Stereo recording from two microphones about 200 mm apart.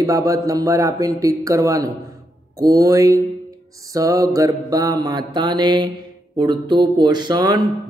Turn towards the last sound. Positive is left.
turn(degrees=-20)  # may be behind; listen again after turning